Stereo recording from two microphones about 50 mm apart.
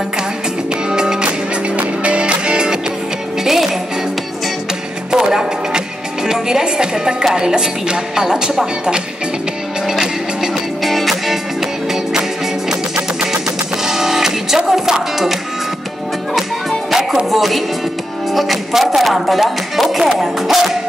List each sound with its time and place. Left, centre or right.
0.8 s music: centre
5.1 s music: centre
6.2 s speech: centre
9.8 s music: centre
10.8 s music: centre
17.3 s speech: centre